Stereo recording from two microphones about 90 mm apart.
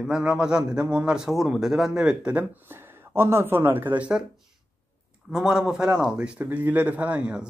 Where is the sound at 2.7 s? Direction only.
25° right (ahead or behind).